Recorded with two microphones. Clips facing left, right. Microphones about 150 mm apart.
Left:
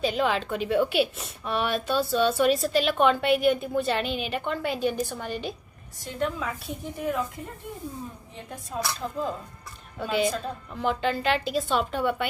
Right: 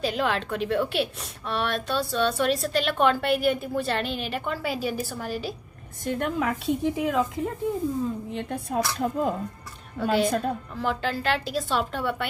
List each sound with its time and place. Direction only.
0.0 s a woman's voice: centre (ahead or behind)
6.0 s a woman's voice: 55° right (ahead or behind); by 7.2 s 90° right
8.3 s a woman's voice: 75° right (ahead or behind)
10.0 s a woman's voice: centre (ahead or behind)